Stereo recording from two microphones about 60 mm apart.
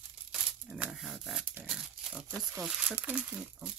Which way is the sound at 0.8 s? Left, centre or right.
Centre.